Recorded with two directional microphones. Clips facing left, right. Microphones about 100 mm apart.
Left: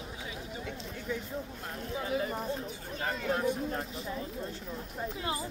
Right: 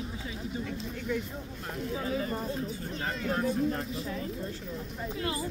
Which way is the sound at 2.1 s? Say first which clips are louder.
Left 2 dB; 15° left (ahead or behind).